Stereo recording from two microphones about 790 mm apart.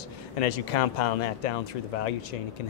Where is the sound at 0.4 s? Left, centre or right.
Left.